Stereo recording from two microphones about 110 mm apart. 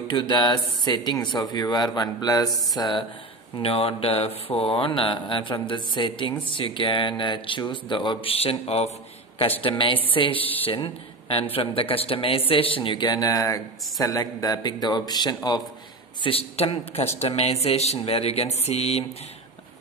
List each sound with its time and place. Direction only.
0.1 s speech: 45° left (ahead or behind)
2.5 s a sound: centre (ahead or behind)
2.8 s speech: 45° left (ahead or behind)
3.5 s a man's voice: 60° left (ahead or behind)
9.6 s speech: 50° left (ahead or behind)
10.7 s a man's voice: 55° left (ahead or behind); by 15.6 s 40° left (ahead or behind)
16.2 s a man's voice: 60° left (ahead or behind); by 19.0 s 75° left (ahead or behind)